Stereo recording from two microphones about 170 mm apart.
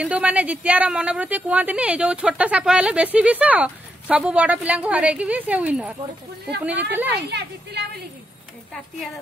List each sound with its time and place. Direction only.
0.0 s speech: 10° right (ahead or behind)
7.2 s speech: 75° right (ahead or behind)